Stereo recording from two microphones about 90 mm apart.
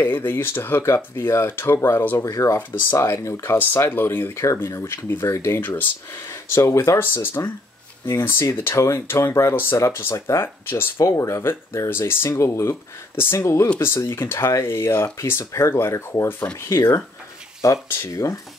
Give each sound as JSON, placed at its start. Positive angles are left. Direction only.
{"t": 0.0, "sound": "speech", "side_deg": 25}